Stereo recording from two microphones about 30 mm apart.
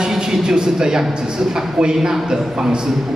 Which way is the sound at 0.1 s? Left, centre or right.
Right.